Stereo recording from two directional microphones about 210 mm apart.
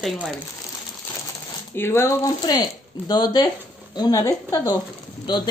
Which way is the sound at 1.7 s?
10° left (ahead or behind).